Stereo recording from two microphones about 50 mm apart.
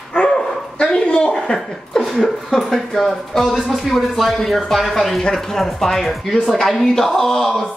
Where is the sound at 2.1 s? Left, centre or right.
Centre.